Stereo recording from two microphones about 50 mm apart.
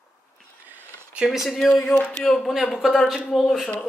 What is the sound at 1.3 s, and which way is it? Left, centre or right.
Speech, centre.